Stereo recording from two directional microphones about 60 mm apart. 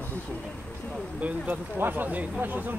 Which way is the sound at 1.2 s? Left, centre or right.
Right.